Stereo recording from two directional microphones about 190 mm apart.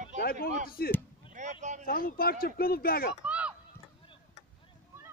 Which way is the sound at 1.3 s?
40° right (ahead or behind).